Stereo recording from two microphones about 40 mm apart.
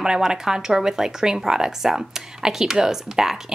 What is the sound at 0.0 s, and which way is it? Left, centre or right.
Speech, centre.